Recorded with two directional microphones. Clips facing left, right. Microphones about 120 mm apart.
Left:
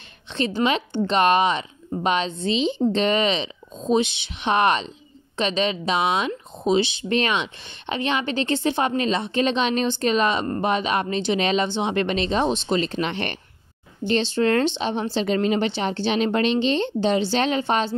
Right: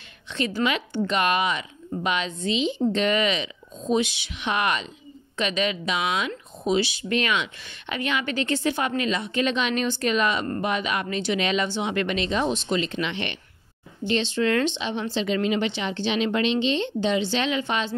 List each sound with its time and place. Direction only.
0.4 s a woman's voice: 25° left (ahead or behind)